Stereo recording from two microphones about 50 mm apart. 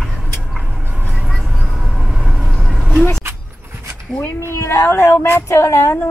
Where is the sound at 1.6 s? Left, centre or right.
Centre.